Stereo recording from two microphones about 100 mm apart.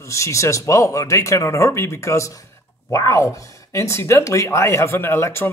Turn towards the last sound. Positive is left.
turn(degrees=25)  # may be behind; listen again after turning